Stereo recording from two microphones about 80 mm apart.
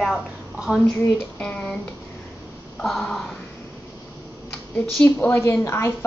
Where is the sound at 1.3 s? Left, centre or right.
Centre.